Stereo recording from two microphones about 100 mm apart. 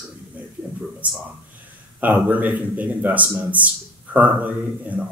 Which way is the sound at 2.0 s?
15° right (ahead or behind).